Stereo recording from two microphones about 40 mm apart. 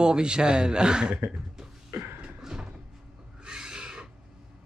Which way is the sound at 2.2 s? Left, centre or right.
Centre.